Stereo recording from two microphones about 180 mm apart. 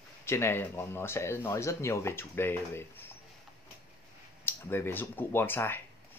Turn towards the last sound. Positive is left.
turn(degrees=10)  # may be behind; listen again after turning